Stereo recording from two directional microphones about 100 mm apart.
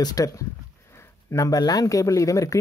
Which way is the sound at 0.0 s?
35° left (ahead or behind).